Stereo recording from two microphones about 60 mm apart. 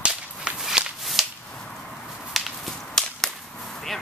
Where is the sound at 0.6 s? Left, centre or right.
Centre.